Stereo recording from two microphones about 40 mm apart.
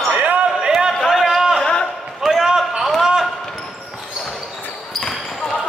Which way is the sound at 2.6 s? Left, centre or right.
Centre.